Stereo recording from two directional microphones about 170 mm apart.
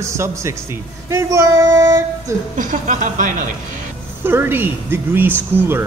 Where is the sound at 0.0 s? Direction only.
15° right (ahead or behind).